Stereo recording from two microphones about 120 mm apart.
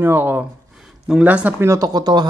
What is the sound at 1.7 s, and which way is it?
Speech, 30° right (ahead or behind).